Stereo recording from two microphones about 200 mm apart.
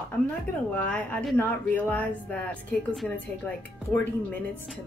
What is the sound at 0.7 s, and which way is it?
Speech, 5° left (ahead or behind).